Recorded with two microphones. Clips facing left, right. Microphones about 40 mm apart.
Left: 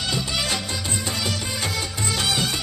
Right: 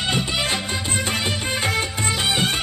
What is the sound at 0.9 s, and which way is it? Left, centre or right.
Music of bollywood, right.